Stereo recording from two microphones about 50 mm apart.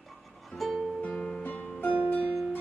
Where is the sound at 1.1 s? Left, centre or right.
Centre.